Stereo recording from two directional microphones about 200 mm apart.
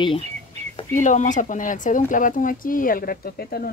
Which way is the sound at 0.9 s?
40° left (ahead or behind).